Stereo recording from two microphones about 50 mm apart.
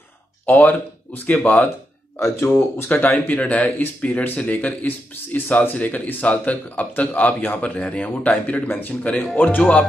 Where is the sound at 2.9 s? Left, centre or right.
Left.